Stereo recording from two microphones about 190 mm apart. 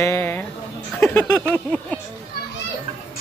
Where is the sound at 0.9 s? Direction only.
10° left (ahead or behind).